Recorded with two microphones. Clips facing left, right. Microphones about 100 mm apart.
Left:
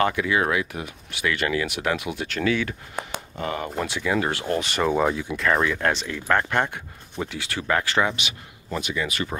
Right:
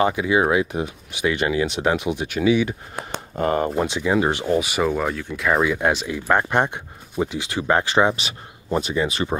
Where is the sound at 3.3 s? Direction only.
40° right (ahead or behind).